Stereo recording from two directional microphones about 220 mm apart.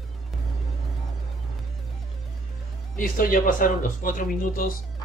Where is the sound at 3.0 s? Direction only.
40° left (ahead or behind).